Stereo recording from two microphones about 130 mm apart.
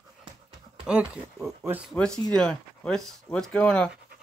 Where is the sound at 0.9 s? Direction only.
5° right (ahead or behind).